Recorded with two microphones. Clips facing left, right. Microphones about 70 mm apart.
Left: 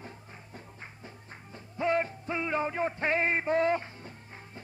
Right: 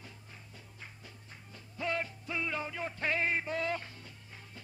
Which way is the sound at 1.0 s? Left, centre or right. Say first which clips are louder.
Left 5 dB; left.